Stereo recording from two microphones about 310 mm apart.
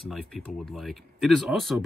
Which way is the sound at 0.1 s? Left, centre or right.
Centre.